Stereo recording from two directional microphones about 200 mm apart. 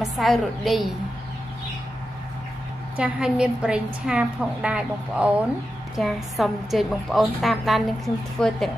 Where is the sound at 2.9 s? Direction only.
5° right (ahead or behind).